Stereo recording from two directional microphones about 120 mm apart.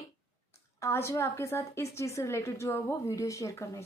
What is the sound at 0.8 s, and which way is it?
Speech, 25° left (ahead or behind).